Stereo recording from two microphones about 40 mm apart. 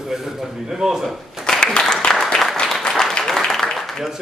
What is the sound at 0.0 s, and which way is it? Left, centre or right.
Speech, centre.